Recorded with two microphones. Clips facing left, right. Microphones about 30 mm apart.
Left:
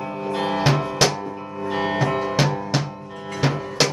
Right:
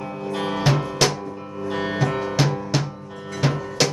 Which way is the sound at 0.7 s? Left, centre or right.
Centre.